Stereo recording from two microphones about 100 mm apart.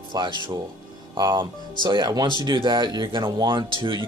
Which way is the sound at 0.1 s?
50° right (ahead or behind).